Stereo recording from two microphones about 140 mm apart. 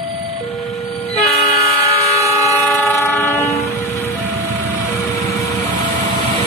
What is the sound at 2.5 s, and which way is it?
Train, 10° left (ahead or behind).